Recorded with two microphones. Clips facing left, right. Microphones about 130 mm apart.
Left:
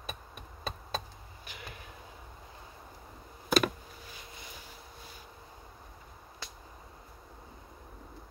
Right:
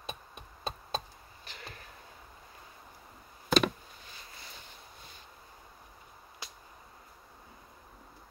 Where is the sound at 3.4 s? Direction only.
5° left (ahead or behind).